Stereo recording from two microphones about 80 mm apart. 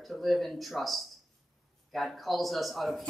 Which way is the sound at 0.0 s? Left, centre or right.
Centre.